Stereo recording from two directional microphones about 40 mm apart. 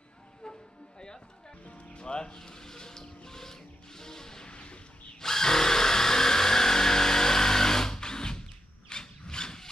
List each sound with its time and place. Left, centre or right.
1.7 s music: left
5.2 s tools: centre
8.8 s a sound: centre